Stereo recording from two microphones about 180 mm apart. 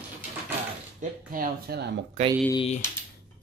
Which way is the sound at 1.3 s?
55° right (ahead or behind).